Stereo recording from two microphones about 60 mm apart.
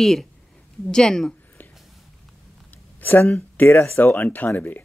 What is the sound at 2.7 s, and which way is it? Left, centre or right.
Speech, left.